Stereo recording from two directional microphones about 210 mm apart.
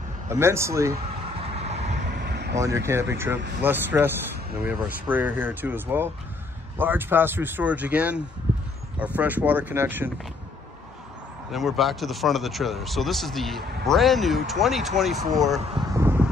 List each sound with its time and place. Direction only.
0.3 s speech: 10° right (ahead or behind)
1.4 s vehicle: 30° right (ahead or behind)
2.2 s vehicle: 50° right (ahead or behind)
2.5 s speech: 15° right (ahead or behind)
11.5 s speech: centre (ahead or behind)
15.7 s a sound: 15° right (ahead or behind)